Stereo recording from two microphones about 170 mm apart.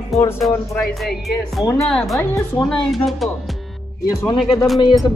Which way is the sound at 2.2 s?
15° left (ahead or behind).